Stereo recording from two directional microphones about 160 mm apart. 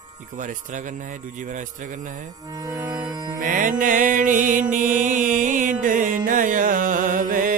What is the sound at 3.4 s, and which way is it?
Music, 55° right (ahead or behind).